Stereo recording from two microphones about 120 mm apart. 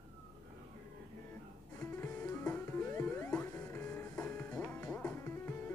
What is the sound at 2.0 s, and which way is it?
Music, 20° left (ahead or behind).